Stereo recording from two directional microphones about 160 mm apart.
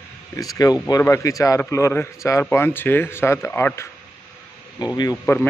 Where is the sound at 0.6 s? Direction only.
25° left (ahead or behind).